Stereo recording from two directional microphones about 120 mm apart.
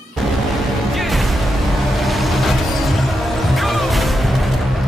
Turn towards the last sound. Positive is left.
turn(degrees=0)  # may be behind; listen again after turning